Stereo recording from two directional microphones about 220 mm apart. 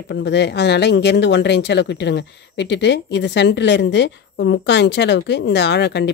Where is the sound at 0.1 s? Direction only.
50° left (ahead or behind).